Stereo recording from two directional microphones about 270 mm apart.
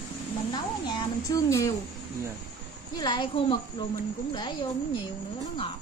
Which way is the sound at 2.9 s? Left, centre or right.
Centre.